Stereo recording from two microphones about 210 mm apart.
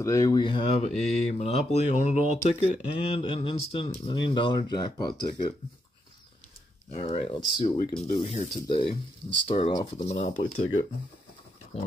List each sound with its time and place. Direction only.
0.0 s speech: 15° left (ahead or behind)
6.9 s speech: 30° left (ahead or behind)
7.3 s speech: 20° left (ahead or behind)